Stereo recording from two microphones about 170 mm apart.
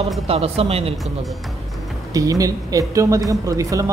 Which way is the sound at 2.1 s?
20° right (ahead or behind).